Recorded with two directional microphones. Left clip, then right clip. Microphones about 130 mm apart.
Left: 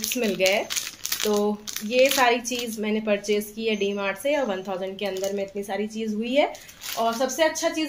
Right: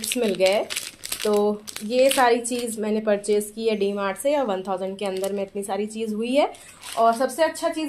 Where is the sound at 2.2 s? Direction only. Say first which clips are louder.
Right 2 dB; 35° right (ahead or behind).